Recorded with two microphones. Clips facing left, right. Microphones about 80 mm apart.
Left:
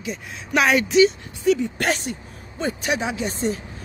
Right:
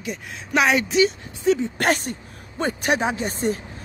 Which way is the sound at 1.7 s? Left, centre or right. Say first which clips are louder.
Right 2 dB; right.